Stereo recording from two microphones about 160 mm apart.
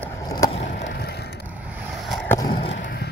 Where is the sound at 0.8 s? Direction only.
90° left.